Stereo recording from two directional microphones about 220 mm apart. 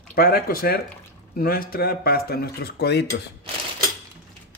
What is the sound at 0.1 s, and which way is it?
Speech, 40° left (ahead or behind).